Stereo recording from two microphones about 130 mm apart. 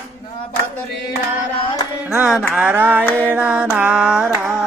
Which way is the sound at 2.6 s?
15° right (ahead or behind).